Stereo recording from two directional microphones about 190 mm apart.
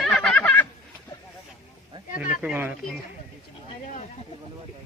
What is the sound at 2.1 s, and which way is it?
Speech, 40° left (ahead or behind).